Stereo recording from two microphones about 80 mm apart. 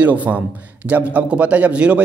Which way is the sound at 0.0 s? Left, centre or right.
Centre.